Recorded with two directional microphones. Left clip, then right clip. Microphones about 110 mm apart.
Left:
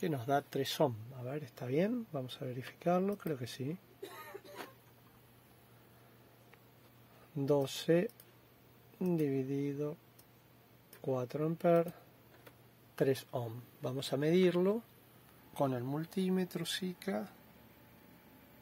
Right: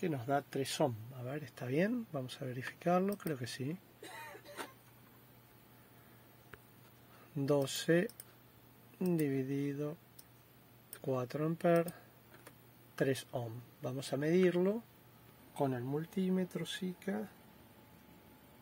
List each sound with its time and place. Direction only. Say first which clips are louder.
0.0 s speech: left 2 dB; 10° left (ahead or behind)
7.3 s speech: left 1 dB; centre (ahead or behind)
11.0 s speech: left 1 dB; centre (ahead or behind); by 16.0 s 15° left (ahead or behind)
16.2 s speech: left 4 dB; 30° left (ahead or behind)